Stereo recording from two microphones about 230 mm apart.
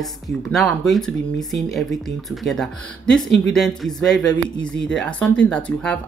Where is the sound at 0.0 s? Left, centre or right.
Centre.